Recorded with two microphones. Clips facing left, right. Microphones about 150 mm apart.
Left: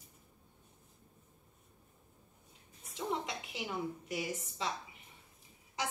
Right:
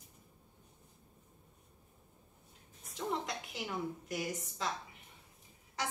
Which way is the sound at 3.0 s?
Centre (ahead or behind).